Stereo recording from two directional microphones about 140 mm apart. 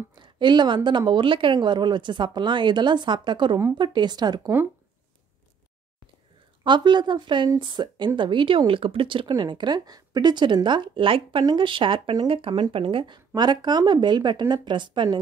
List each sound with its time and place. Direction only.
0.1 s speech: 35° right (ahead or behind)
6.6 s speech: 35° right (ahead or behind)